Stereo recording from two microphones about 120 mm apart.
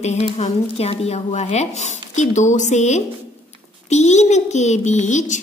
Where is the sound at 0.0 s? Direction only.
70° left (ahead or behind); by 5.4 s 90° left.